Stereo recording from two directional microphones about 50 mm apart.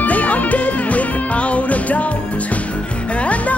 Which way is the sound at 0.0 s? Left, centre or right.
Left.